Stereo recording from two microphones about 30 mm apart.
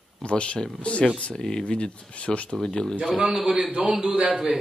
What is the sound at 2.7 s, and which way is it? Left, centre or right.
Speech, left.